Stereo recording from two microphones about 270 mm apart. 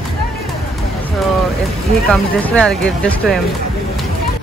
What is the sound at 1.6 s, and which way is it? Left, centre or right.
Speech, centre.